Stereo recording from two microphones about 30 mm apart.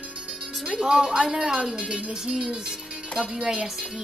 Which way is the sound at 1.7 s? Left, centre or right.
Right.